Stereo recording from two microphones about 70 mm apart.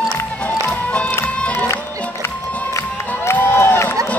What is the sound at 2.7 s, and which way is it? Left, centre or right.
Crowd, left.